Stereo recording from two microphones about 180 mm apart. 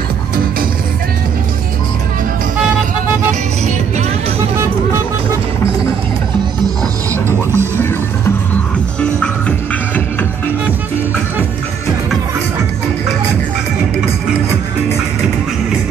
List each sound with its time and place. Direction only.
7.2 s music: 15° right (ahead or behind)